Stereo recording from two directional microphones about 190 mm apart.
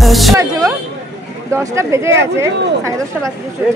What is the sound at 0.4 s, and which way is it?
A woman's voice, 15° right (ahead or behind).